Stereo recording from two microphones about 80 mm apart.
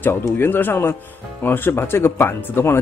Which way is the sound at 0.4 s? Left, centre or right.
Left.